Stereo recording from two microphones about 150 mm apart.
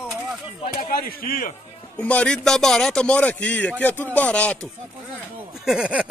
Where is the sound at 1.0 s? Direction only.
75° left (ahead or behind).